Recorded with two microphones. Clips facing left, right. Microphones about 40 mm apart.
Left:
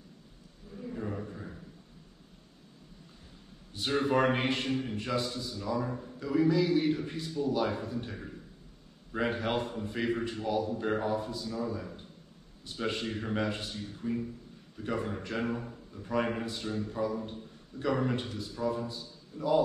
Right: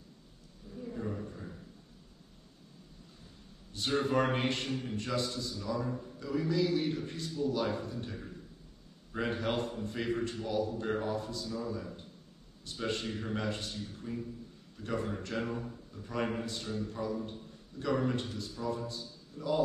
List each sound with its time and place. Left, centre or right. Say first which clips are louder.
0.9 s a sound: left 2 dB; left
3.7 s a man's voice: left 2 dB; centre
14.0 s speech: left 8 dB; left
14.9 s a man's voice: left 2 dB; centre